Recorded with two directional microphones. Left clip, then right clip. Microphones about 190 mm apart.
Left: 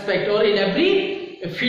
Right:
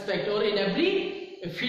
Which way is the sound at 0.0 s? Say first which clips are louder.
Left 8 dB; 10° left (ahead or behind).